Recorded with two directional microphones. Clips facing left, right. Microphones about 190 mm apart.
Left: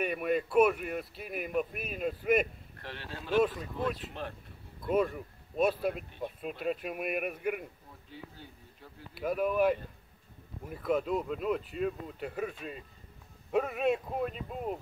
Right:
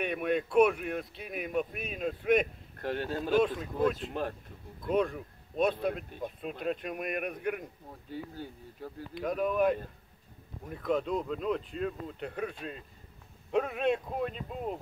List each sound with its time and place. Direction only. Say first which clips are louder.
0.0 s speech: even; centre (ahead or behind)
2.8 s speech: right 11 dB; 45° right (ahead or behind)
3.3 s speech: even; 5° left (ahead or behind)
3.9 s speech: right 5 dB; 45° right (ahead or behind)
4.8 s speech: even; 5° left (ahead or behind)
8.1 s speech: right 8 dB; 45° right (ahead or behind)
9.1 s speech: left 1 dB; 5° left (ahead or behind)